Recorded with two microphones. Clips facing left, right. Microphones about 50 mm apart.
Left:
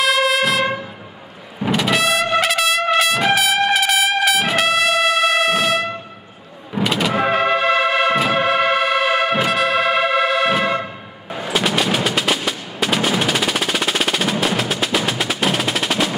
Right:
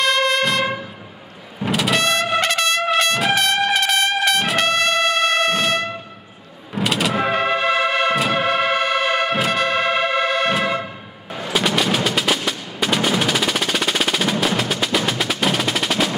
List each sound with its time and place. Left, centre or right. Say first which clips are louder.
0.0 s music: left 1 dB; centre
1.6 s trumpet: left 1 dB; centre
6.7 s music: left 1 dB; centre